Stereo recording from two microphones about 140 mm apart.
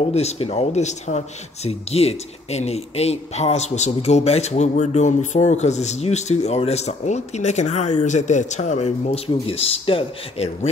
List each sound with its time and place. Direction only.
0.0 s speech: 50° left (ahead or behind)
9.3 s speech: 45° left (ahead or behind)